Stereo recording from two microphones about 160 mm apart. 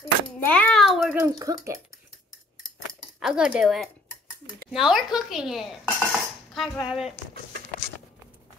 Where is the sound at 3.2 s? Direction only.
5° right (ahead or behind).